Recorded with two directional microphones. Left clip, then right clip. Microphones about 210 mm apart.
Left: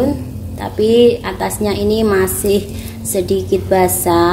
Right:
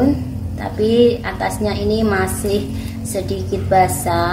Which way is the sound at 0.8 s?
40° left (ahead or behind).